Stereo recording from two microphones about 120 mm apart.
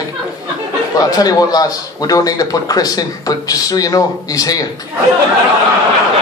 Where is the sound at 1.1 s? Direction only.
30° left (ahead or behind).